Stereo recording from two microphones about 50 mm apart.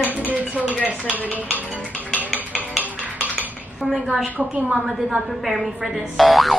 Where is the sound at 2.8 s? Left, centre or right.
Right.